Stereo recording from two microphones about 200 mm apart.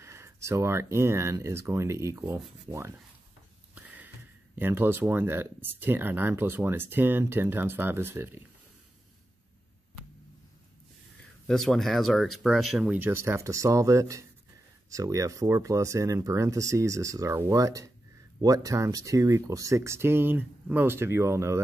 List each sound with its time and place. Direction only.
0.0 s speech: 15° right (ahead or behind)
3.7 s sniff: 10° right (ahead or behind)
4.6 s speech: 10° right (ahead or behind)
11.4 s speech: centre (ahead or behind); by 21.5 s 15° right (ahead or behind)